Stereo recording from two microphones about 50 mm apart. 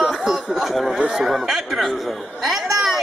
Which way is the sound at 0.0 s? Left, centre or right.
Centre.